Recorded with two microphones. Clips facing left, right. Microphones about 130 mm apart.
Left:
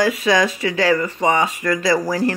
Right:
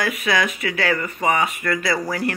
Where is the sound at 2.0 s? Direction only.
35° left (ahead or behind).